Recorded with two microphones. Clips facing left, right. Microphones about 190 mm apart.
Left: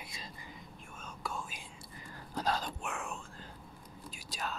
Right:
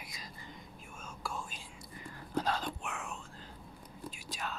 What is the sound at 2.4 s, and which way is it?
Whispering, 40° left (ahead or behind).